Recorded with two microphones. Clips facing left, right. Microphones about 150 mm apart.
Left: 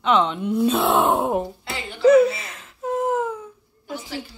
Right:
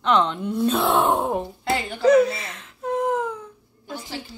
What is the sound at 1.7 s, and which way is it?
Speech, 45° right (ahead or behind).